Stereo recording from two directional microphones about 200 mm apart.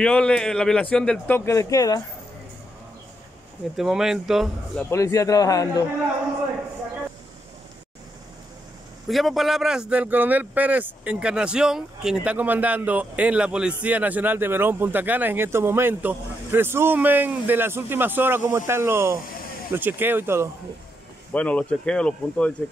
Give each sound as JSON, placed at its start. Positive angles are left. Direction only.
{"t": 0.0, "sound": "speech", "side_deg": 5}
{"t": 3.7, "sound": "speech", "side_deg": -5}
{"t": 4.9, "sound": "a man's voice", "side_deg": 15}
{"t": 9.1, "sound": "speech", "side_deg": 0}
{"t": 21.3, "sound": "speech", "side_deg": 5}